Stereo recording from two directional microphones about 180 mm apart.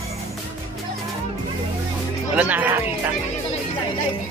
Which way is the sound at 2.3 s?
10° right (ahead or behind).